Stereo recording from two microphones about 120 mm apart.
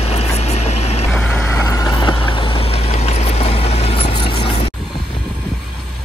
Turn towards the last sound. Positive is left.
turn(degrees=50)  # may be behind; listen again after turning